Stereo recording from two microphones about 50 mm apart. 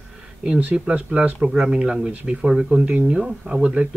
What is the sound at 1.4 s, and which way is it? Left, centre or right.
Speech, centre.